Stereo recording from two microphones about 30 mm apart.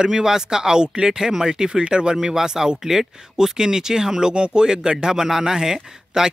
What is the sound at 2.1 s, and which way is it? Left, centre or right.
Speech, centre.